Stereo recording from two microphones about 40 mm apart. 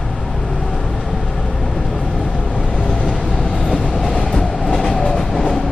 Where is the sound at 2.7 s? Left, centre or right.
Centre.